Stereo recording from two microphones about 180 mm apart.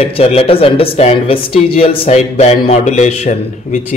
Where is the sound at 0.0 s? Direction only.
35° left (ahead or behind).